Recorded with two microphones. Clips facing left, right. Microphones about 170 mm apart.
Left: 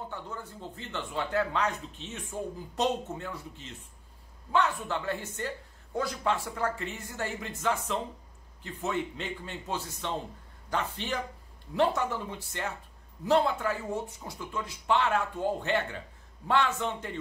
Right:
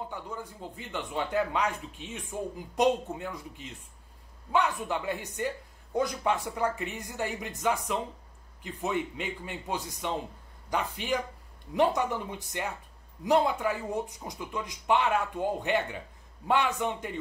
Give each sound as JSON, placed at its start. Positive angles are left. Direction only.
{"t": 0.1, "sound": "speech", "side_deg": -15}